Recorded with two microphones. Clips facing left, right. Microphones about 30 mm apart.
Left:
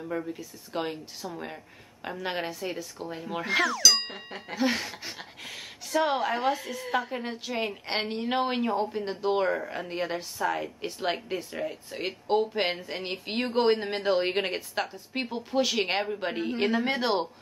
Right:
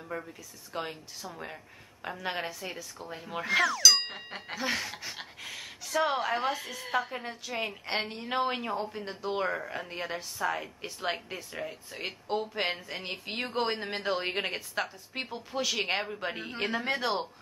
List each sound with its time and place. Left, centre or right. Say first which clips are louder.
0.0 s speech: left 5 dB; centre
0.3 s a woman's voice: left 6 dB; centre
1.2 s a woman's voice: left 3 dB; centre
7.8 s a woman's voice: left 3 dB; centre
9.4 s a woman's voice: left 4 dB; centre
16.8 s a woman's voice: left 4 dB; centre